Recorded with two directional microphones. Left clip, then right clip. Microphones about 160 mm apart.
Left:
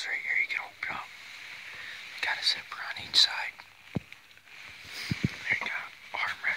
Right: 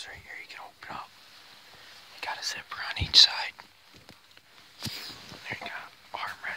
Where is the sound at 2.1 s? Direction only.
10° right (ahead or behind).